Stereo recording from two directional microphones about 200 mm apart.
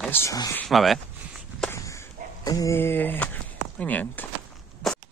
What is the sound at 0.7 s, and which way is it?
Speech, centre (ahead or behind).